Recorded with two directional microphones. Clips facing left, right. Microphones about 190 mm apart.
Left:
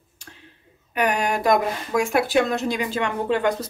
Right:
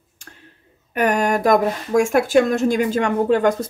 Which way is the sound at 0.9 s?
50° right (ahead or behind).